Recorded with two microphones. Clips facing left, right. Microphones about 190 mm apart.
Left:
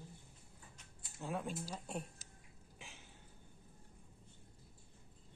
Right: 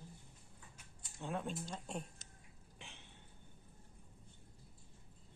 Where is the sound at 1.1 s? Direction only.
5° left (ahead or behind).